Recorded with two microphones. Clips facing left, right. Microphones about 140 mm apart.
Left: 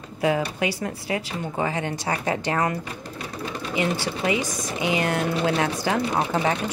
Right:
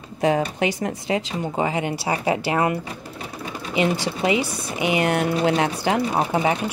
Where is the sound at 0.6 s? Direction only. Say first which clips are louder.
Right 3 dB; 15° right (ahead or behind).